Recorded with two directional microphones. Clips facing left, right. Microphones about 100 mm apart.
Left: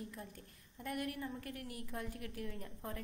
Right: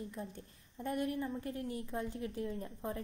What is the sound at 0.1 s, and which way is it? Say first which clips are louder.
A woman's voice: right 5 dB; 20° right (ahead or behind).